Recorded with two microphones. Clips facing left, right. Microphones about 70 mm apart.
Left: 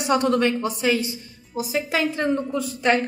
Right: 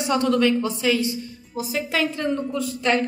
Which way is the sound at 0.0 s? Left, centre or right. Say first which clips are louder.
Even; left.